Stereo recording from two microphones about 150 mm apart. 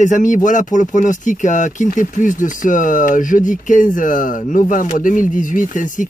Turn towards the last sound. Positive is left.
turn(degrees=60)  # may be behind; listen again after turning